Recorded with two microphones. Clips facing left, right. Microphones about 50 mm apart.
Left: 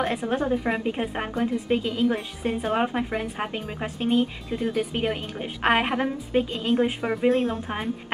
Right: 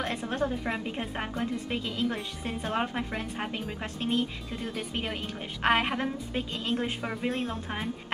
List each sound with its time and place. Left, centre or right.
0.0 s speech: centre